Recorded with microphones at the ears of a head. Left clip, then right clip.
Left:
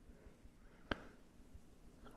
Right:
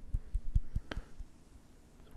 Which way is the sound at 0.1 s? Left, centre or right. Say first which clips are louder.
Right 12 dB; right.